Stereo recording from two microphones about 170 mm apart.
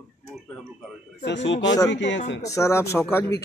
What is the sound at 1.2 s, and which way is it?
A man's voice, 90° left.